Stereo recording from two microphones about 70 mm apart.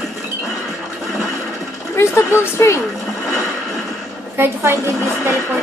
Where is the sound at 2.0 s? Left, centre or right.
Left.